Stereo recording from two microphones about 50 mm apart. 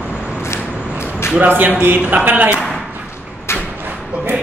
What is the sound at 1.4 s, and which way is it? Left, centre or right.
A man's voice, right.